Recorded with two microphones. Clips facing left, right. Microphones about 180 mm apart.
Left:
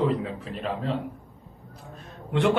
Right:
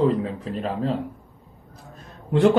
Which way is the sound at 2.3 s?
40° right (ahead or behind).